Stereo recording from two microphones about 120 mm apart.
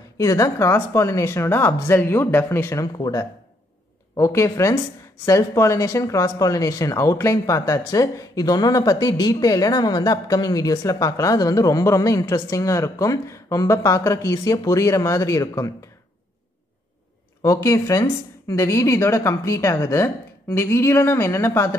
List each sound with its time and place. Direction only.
0.2 s speech: 30° left (ahead or behind)
17.4 s speech: 30° left (ahead or behind)